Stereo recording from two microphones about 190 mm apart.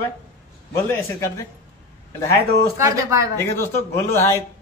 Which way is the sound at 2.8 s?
15° right (ahead or behind).